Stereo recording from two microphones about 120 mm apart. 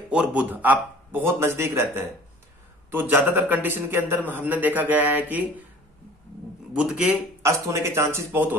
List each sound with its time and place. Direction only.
0.1 s a man's voice: 10° right (ahead or behind)
6.7 s a man's voice: 10° right (ahead or behind)
7.4 s speech: 25° right (ahead or behind)